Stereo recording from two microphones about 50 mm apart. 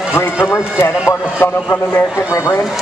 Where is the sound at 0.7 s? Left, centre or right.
Left.